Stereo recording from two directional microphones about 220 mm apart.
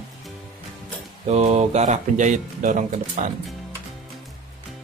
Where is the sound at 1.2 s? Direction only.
30° right (ahead or behind).